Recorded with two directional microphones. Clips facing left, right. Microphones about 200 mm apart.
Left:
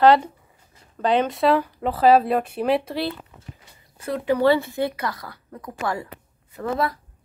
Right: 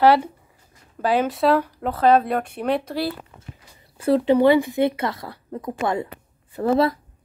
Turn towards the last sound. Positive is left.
turn(degrees=-30)  # may be behind; listen again after turning